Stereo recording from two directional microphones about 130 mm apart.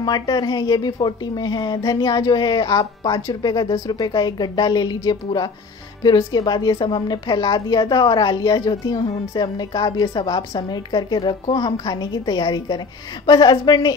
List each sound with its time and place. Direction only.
0.0 s a woman's voice: 35° left (ahead or behind)